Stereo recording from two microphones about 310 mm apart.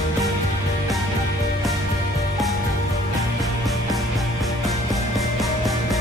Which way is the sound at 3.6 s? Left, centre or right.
Centre.